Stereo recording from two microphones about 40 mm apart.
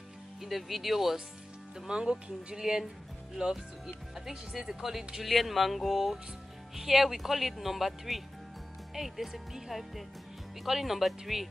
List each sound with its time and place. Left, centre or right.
0.4 s speech: centre
1.9 s speech: right
4.8 s speech: centre